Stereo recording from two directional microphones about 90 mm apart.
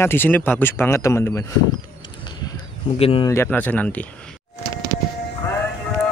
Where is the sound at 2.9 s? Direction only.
90° left.